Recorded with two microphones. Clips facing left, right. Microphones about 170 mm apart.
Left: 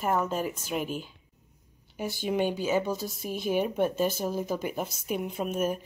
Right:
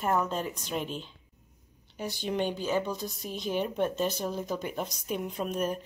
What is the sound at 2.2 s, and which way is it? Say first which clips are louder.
Speech: left 3 dB; 10° left (ahead or behind).